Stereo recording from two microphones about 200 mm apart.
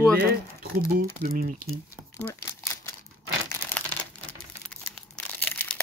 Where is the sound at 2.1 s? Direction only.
15° left (ahead or behind).